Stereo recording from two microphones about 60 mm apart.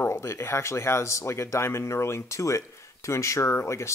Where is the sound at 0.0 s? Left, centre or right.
Left.